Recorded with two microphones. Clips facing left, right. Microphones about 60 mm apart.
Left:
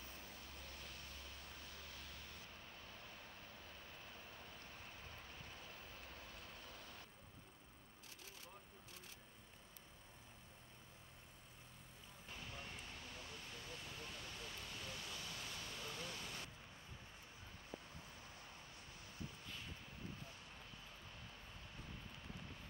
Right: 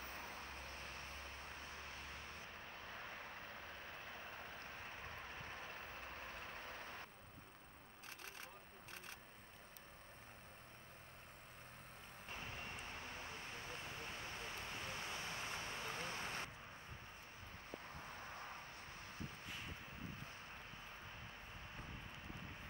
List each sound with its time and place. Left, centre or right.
0.0 s vehicle: right
12.3 s vehicle: right
17.6 s a sound: right